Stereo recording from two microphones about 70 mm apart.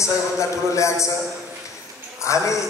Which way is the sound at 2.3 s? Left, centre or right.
Left.